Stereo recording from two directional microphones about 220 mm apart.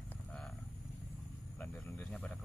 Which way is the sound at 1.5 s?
10° left (ahead or behind).